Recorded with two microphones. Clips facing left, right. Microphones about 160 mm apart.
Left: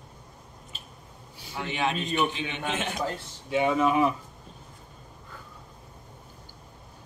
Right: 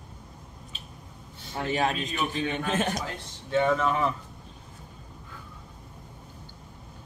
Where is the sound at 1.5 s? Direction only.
40° right (ahead or behind).